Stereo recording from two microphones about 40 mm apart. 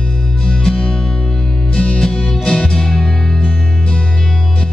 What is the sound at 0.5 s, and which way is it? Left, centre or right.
Music, centre.